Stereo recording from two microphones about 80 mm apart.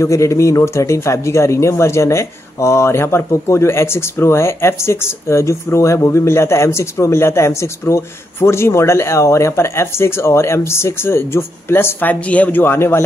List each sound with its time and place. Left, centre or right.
0.0 s speech: left